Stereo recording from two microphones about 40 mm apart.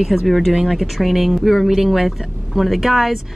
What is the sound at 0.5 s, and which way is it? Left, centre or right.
Speech, centre.